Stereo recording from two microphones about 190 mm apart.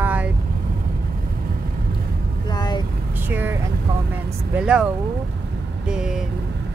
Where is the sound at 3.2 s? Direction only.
10° right (ahead or behind).